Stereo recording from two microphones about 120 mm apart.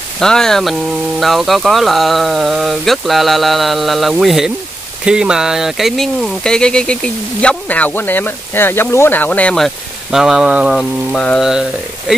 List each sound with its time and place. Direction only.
0.2 s speech: 5° left (ahead or behind)
10.1 s speech: 5° right (ahead or behind)
10.8 s speech: 5° left (ahead or behind)